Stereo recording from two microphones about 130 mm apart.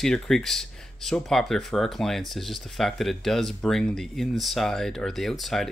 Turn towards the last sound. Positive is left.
turn(degrees=0)  # may be behind; listen again after turning